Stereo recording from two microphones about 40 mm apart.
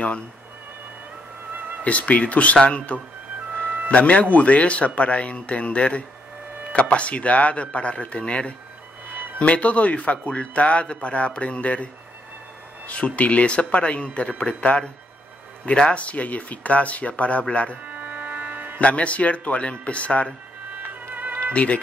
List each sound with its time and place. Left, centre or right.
1.9 s speech: left
17.8 s music: right
18.8 s speech: left
20.7 s music: right
21.5 s speech: left